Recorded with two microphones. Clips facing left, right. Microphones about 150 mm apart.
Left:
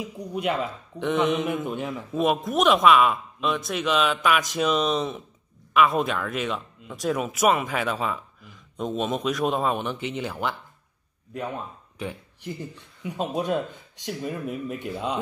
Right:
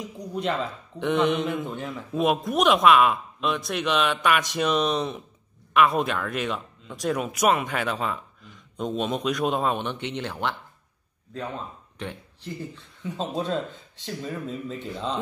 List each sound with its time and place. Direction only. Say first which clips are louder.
0.0 s speech: left 1 dB; 10° left (ahead or behind)
1.5 s speech: left 2 dB; 20° left (ahead or behind)
2.1 s speech: even; centre (ahead or behind)